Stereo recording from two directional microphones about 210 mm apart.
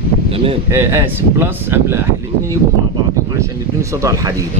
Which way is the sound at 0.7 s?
10° right (ahead or behind).